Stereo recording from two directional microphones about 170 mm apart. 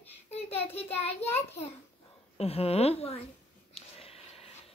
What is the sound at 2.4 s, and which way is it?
Speech, 35° left (ahead or behind).